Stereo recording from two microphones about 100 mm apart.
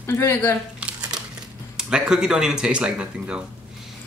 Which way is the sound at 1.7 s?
5° right (ahead or behind).